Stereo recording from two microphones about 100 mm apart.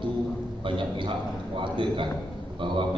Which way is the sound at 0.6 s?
55° right (ahead or behind).